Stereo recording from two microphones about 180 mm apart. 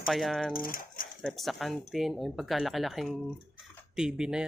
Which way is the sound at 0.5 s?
50° left (ahead or behind).